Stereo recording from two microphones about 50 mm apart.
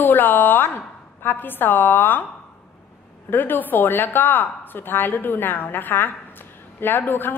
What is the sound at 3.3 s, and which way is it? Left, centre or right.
A woman's voice, left.